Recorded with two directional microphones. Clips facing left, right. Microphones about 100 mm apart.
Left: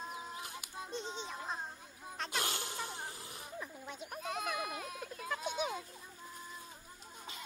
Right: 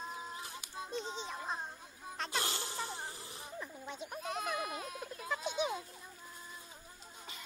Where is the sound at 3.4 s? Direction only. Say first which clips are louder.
Right 1 dB; centre (ahead or behind).